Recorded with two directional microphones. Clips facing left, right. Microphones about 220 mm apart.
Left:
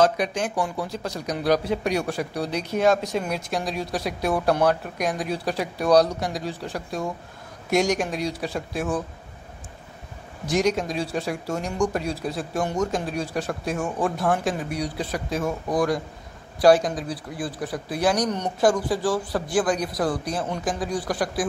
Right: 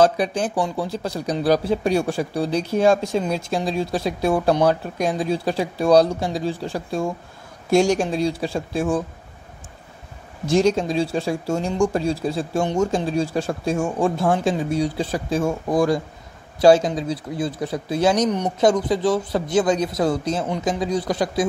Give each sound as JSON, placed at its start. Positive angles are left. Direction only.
{"t": 0.0, "sound": "speech", "side_deg": -30}
{"t": 10.4, "sound": "speech", "side_deg": -30}